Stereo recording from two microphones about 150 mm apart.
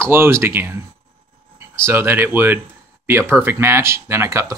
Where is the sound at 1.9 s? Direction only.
15° right (ahead or behind).